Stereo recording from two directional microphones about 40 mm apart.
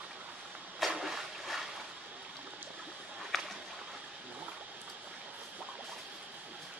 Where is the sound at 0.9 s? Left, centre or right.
Centre.